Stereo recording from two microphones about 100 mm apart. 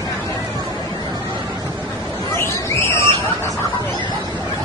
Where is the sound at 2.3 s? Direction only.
25° left (ahead or behind).